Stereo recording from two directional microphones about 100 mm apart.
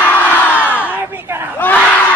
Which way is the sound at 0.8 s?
20° right (ahead or behind).